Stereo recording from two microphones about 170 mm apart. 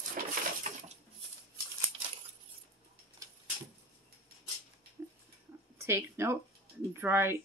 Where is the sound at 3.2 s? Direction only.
20° right (ahead or behind).